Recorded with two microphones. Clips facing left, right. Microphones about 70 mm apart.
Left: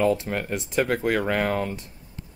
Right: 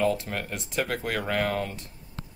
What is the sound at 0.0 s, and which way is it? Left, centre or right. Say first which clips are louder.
Speech: left 4 dB; left.